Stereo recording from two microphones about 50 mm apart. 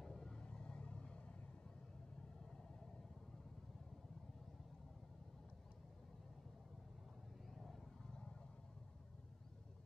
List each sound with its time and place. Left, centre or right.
0.0 s vehicle: centre
7.5 s vehicle: centre
8.1 s vehicle: centre